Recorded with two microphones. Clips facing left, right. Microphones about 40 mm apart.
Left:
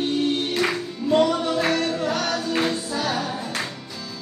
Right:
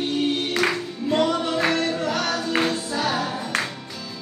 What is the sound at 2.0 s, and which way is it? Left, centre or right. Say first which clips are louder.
Music: even; right.